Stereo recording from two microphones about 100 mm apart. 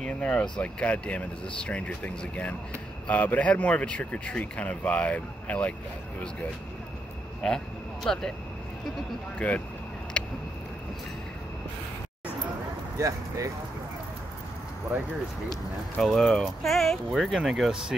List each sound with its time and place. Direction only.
0.0 s speech: 10° left (ahead or behind)
7.4 s speech: 5° left (ahead or behind)
9.4 s speech: 15° left (ahead or behind)
10.1 s a sound: 10° left (ahead or behind)
16.0 s speech: 5° left (ahead or behind)